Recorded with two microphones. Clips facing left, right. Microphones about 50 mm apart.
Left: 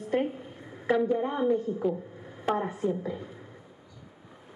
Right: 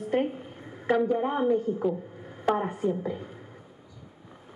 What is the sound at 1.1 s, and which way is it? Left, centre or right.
Speech, centre.